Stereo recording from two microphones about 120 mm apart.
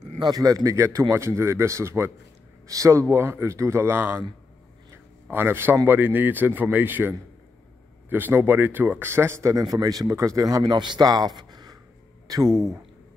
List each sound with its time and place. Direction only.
0.2 s speech: 30° right (ahead or behind)
4.9 s a sound: 20° right (ahead or behind)
5.9 s speech: 15° right (ahead or behind); by 11.8 s 35° right (ahead or behind)
12.4 s speech: centre (ahead or behind)